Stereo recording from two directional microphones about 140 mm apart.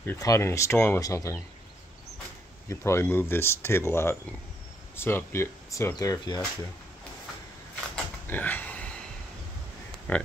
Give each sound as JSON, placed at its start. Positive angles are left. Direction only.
{"t": 0.0, "sound": "speech", "side_deg": 20}
{"t": 2.7, "sound": "speech", "side_deg": 20}
{"t": 7.9, "sound": "pig", "side_deg": 10}